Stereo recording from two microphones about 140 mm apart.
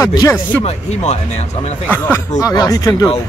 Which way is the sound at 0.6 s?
50° left (ahead or behind).